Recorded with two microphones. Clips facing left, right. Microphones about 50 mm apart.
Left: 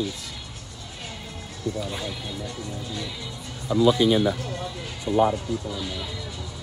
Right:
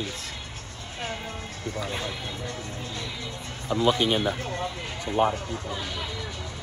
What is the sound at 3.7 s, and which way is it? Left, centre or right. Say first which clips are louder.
Speech: left 4 dB; right.